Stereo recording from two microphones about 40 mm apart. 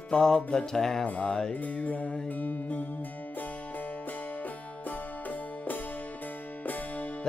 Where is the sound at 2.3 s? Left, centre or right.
Left.